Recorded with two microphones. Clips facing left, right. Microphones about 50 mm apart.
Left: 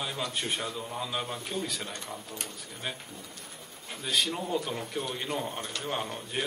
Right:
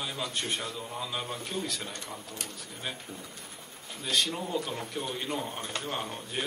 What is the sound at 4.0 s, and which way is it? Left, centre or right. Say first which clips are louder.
A man's voice: even; centre.